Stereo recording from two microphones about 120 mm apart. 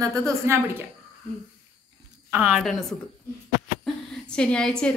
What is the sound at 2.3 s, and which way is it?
Speech, 10° right (ahead or behind).